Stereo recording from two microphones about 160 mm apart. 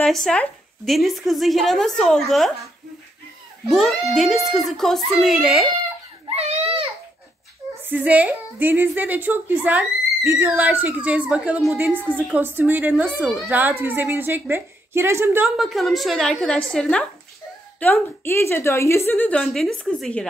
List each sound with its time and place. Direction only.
0.0 s speech: 5° left (ahead or behind)
3.6 s speech: centre (ahead or behind)
6.2 s baby cry: 40° right (ahead or behind)
7.8 s a woman's voice: 10° right (ahead or behind)
15.4 s a woman's voice: centre (ahead or behind)